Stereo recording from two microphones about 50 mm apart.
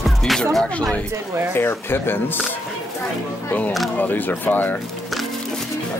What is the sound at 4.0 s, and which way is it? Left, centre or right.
Speech, left.